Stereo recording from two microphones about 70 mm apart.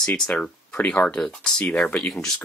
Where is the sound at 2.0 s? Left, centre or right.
Centre.